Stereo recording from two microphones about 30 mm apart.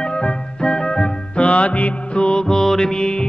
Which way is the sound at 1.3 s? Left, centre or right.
Left.